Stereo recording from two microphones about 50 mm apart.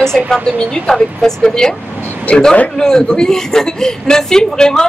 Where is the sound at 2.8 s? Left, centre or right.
Centre.